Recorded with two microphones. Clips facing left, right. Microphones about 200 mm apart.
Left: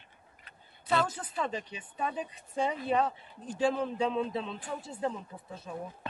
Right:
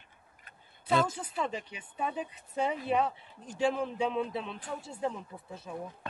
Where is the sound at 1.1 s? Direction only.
10° right (ahead or behind).